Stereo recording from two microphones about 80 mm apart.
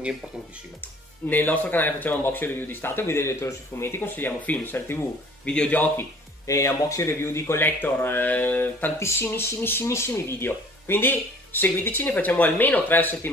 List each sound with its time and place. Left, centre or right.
1.3 s speech: left
5.4 s speech: centre
6.4 s speech: left